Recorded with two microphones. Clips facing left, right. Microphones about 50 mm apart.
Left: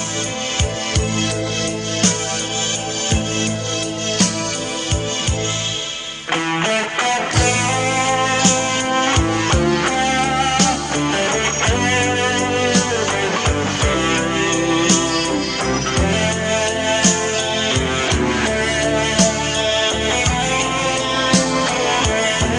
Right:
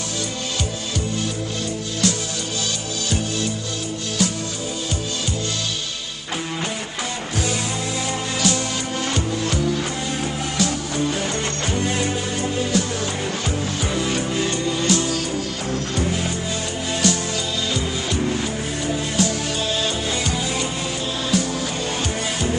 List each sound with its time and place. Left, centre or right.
6.3 s music: left
17.6 s music: left